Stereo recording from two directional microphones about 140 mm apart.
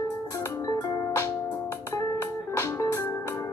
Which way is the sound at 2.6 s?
20° left (ahead or behind).